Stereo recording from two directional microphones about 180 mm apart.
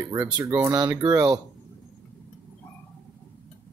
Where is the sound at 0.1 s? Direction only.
15° right (ahead or behind).